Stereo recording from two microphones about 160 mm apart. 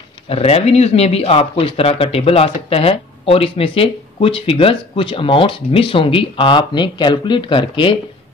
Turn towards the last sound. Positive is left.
turn(degrees=30)  # may be behind; listen again after turning